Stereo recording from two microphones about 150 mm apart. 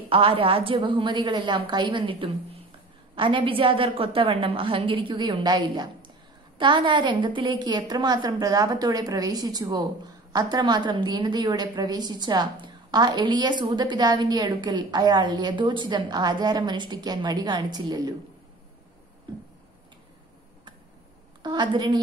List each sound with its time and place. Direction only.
0.1 s a woman's voice: 35° right (ahead or behind)
21.4 s a woman's voice: 30° right (ahead or behind)